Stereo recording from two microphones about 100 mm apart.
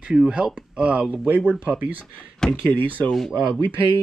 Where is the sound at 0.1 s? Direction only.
5° right (ahead or behind).